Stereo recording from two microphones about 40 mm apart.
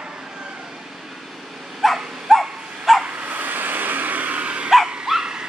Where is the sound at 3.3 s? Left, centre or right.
Right.